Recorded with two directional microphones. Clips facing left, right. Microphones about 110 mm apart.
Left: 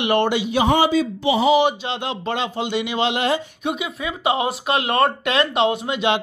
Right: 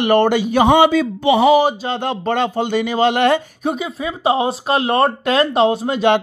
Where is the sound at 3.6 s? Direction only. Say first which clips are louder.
Right 3 dB; 35° right (ahead or behind).